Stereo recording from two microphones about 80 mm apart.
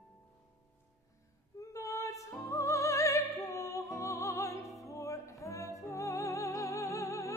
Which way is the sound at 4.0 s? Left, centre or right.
Left.